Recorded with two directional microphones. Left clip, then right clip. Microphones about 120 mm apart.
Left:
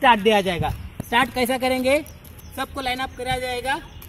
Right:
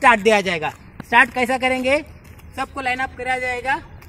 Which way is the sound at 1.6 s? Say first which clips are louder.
Even; 5° left (ahead or behind).